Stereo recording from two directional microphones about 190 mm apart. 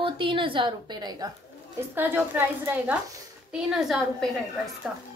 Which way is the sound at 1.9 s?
10° right (ahead or behind).